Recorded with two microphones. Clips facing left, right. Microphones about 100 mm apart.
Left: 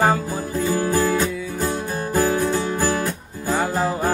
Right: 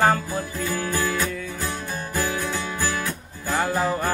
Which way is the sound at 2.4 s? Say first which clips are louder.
Left 6 dB; 40° left (ahead or behind).